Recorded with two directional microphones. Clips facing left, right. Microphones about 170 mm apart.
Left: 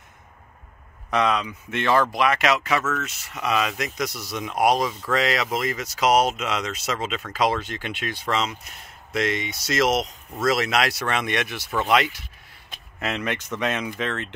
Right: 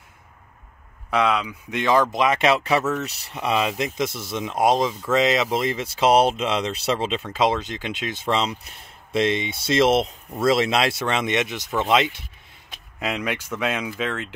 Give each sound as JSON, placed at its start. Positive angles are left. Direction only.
{"t": 1.1, "sound": "speech", "side_deg": -10}
{"t": 13.0, "sound": "speech", "side_deg": -10}